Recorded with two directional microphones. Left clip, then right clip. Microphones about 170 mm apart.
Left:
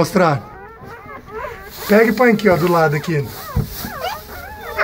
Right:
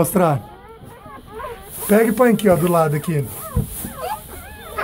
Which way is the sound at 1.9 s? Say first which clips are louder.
Left 2 dB; 20° right (ahead or behind).